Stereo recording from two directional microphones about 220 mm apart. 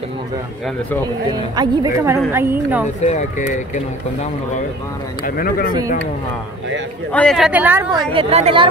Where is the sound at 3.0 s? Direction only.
30° left (ahead or behind).